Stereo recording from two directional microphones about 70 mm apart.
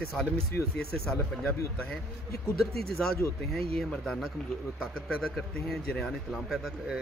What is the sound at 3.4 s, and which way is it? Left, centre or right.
Speech, centre.